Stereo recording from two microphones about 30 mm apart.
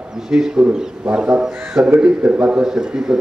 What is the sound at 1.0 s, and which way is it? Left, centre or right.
A man's voice, right.